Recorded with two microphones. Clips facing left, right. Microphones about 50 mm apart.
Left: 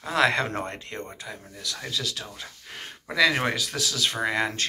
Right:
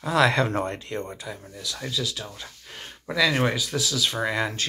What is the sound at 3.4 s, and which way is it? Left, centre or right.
Speech, left.